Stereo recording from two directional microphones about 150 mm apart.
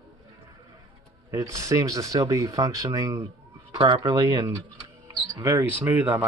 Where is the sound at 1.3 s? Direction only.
20° right (ahead or behind).